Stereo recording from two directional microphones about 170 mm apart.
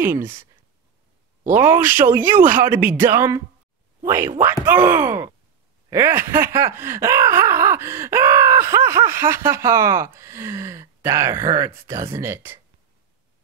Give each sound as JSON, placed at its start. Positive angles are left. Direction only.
{"t": 0.0, "sound": "groan", "side_deg": -10}
{"t": 1.6, "sound": "groan", "side_deg": -10}
{"t": 4.0, "sound": "speech", "side_deg": -15}
{"t": 4.8, "sound": "groan", "side_deg": -15}